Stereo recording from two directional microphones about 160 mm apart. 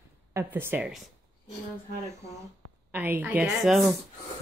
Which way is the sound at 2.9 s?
10° right (ahead or behind).